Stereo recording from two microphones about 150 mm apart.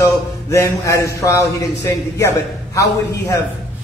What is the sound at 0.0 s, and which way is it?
A man's voice, 20° left (ahead or behind).